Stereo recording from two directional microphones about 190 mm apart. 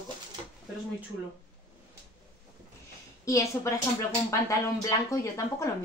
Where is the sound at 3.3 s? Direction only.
15° left (ahead or behind).